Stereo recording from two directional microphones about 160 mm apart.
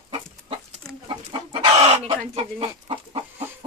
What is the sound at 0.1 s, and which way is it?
Chicken, 35° right (ahead or behind).